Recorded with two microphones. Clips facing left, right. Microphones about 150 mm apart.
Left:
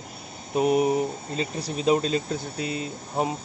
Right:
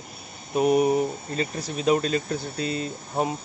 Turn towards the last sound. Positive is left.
turn(degrees=15)  # may be behind; listen again after turning